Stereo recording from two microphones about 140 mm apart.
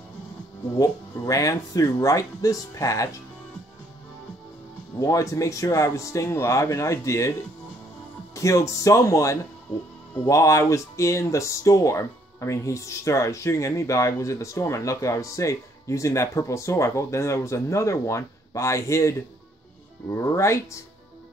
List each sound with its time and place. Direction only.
0.7 s speech: 25° left (ahead or behind)
5.0 s speech: 20° left (ahead or behind)
8.4 s speech: 20° left (ahead or behind)